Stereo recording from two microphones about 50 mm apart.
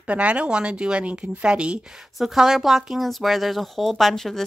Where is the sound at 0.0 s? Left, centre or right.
Right.